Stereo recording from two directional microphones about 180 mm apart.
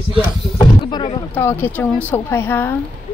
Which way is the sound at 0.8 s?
25° left (ahead or behind).